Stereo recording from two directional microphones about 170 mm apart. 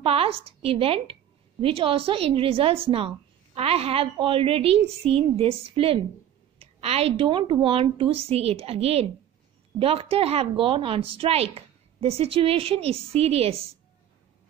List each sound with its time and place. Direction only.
0.0 s a woman's voice: 35° right (ahead or behind)